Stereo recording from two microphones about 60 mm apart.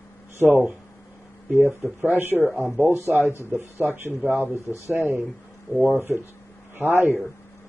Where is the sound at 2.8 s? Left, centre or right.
Right.